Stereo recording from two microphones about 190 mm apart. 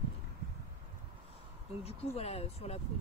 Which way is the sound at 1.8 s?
30° left (ahead or behind).